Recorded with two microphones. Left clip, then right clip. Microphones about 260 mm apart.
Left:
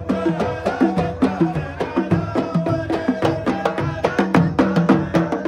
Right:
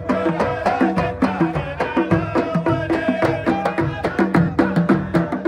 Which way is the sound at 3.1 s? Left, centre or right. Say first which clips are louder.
Right 2 dB; centre.